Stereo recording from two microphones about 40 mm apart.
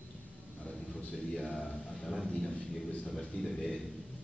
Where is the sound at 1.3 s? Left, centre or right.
Centre.